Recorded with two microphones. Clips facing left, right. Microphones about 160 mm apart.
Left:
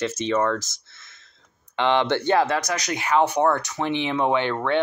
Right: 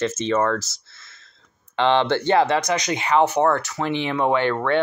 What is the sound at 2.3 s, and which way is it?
Speech, 5° left (ahead or behind).